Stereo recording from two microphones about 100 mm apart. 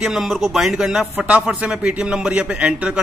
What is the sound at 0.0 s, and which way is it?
A man's voice, 5° right (ahead or behind).